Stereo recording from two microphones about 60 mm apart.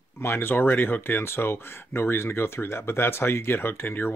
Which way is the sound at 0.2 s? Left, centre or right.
Left.